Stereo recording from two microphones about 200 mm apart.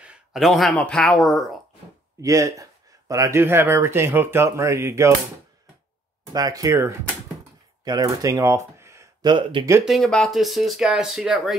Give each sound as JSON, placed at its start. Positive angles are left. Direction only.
{"t": 0.0, "sound": "speech", "side_deg": -5}
{"t": 2.2, "sound": "speech", "side_deg": -15}
{"t": 6.3, "sound": "speech", "side_deg": -20}
{"t": 9.8, "sound": "speech", "side_deg": 0}